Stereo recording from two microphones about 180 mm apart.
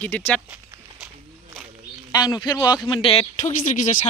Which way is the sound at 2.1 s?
25° left (ahead or behind).